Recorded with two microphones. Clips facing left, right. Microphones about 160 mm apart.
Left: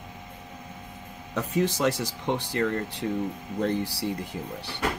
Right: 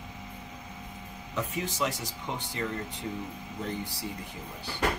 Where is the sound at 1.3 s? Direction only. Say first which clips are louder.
Left 8 dB; 85° left.